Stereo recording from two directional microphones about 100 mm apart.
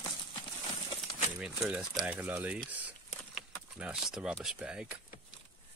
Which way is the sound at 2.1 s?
15° right (ahead or behind).